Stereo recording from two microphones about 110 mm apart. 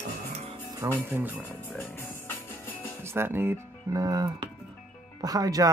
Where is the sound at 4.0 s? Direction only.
35° right (ahead or behind).